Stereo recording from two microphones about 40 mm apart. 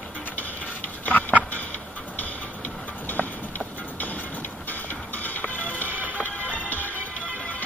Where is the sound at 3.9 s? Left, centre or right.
Left.